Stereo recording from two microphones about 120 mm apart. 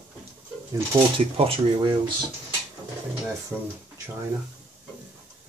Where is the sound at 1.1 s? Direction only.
50° right (ahead or behind).